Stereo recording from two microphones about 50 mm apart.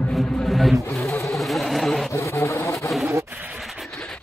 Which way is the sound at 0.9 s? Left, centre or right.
Left.